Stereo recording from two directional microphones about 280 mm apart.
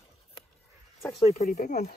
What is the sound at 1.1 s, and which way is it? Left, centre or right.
Speech, left.